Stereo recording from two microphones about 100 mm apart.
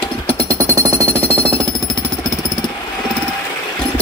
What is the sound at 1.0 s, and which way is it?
Jackhammer, 15° left (ahead or behind).